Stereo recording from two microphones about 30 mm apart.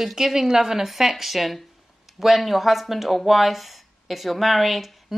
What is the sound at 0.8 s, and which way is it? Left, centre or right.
Speech, centre.